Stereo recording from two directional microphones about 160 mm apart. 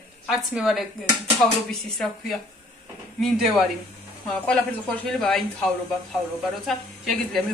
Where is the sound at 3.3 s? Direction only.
Centre (ahead or behind).